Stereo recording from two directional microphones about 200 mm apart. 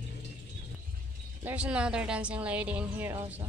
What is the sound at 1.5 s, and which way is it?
A woman's voice, 5° right (ahead or behind).